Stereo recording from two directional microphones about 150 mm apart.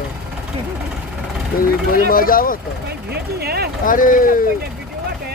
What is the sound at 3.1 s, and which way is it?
Speech, 90° right.